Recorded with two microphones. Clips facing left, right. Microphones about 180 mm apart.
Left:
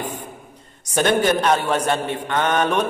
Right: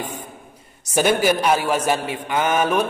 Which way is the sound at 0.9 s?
10° right (ahead or behind).